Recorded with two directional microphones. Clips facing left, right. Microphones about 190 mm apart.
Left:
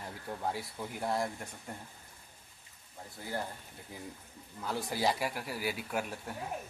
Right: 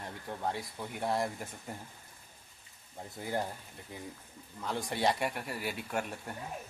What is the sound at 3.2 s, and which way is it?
Speech, 20° right (ahead or behind).